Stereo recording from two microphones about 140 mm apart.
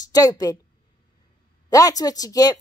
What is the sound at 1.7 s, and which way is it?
Speech, 25° left (ahead or behind).